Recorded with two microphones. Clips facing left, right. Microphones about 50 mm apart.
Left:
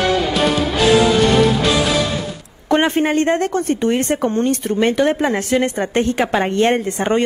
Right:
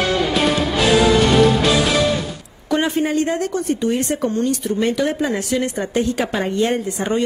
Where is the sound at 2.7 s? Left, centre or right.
Left.